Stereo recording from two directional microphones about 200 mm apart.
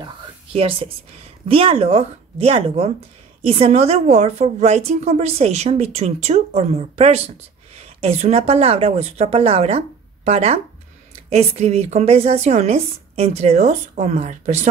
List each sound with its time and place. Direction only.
0.0 s whispering: 30° right (ahead or behind)
1.5 s a woman's voice: 30° right (ahead or behind)